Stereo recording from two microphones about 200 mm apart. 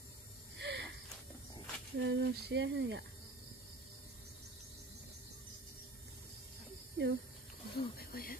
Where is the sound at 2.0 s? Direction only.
60° right (ahead or behind).